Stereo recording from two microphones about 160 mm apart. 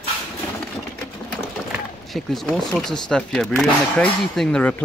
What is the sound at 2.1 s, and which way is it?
Speech, centre (ahead or behind).